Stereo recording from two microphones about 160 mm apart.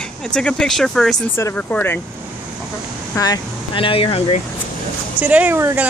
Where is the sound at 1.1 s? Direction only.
20° left (ahead or behind).